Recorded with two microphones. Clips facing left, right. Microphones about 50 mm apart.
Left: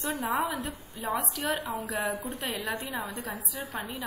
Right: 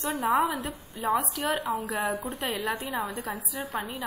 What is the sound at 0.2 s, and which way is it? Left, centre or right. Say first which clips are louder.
A woman's voice: right 6 dB; centre.